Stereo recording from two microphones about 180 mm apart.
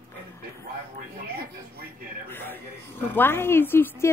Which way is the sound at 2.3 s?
10° left (ahead or behind).